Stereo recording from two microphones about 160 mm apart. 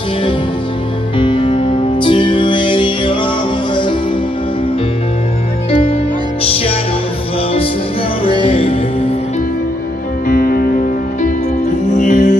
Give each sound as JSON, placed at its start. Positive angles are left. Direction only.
{"t": 1.1, "sound": "music", "side_deg": 30}
{"t": 5.7, "sound": "music", "side_deg": 40}
{"t": 8.3, "sound": "music", "side_deg": 35}
{"t": 10.2, "sound": "music", "side_deg": 60}
{"t": 12.0, "sound": "music", "side_deg": 50}